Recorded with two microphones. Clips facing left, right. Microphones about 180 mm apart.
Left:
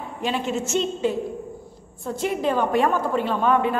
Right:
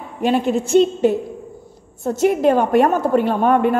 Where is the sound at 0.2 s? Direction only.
55° right (ahead or behind).